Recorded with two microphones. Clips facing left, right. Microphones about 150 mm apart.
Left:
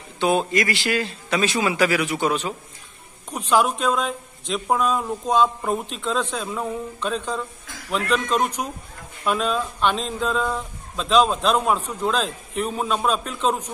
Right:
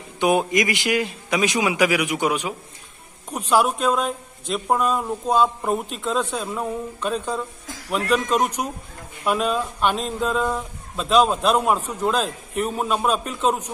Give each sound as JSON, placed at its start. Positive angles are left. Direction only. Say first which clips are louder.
{"t": 0.2, "sound": "speech", "louder": "right 1 dB", "side_deg": -15}